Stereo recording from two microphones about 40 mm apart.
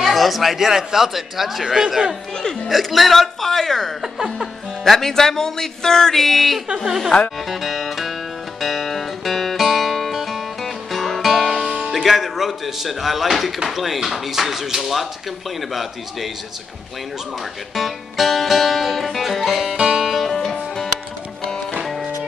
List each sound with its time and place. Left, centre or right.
0.0 s speech: centre
2.3 s speech: left
2.7 s speech: centre
4.0 s speech: centre
4.8 s music: centre
7.4 s speech: centre
8.5 s music: centre
11.8 s speech: centre
17.7 s music: centre
19.8 s music: centre
20.1 s music: centre